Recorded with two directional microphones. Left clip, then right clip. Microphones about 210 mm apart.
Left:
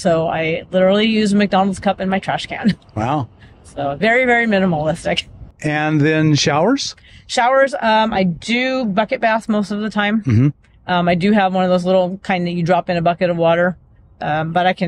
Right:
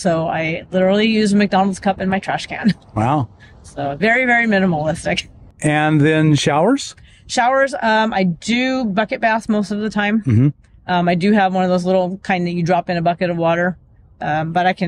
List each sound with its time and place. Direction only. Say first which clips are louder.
0.0 s speech: left 2 dB; 20° left (ahead or behind)
2.9 s speech: right 3 dB; 5° right (ahead or behind)
3.7 s speech: left 1 dB; 20° left (ahead or behind)
5.6 s speech: right 2 dB; 10° right (ahead or behind)
7.2 s speech: left 1 dB; 15° left (ahead or behind)
10.2 s speech: even; 5° right (ahead or behind)
10.9 s speech: even; 15° left (ahead or behind)